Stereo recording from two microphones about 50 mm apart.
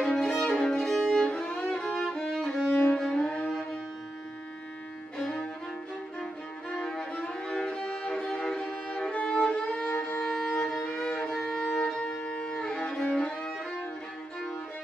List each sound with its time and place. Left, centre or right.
0.0 s violin: centre
2.1 s music: centre
6.8 s violin: centre
9.8 s violin: left
10.2 s violin: centre
10.7 s music: centre